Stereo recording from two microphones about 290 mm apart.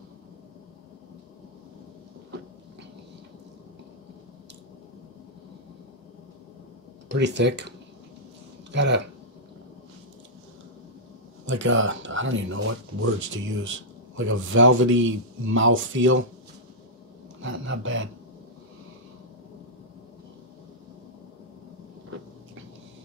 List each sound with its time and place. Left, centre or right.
7.1 s speech: right
8.7 s speech: right
11.4 s a man's voice: right
17.4 s a sound: right